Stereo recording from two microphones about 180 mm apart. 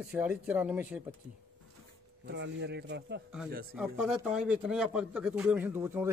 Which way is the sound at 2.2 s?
75° right (ahead or behind).